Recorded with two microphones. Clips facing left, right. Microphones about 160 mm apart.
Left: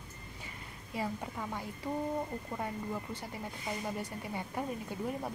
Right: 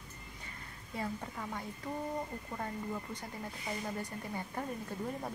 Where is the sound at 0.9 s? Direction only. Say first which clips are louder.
Left 2 dB; 5° left (ahead or behind).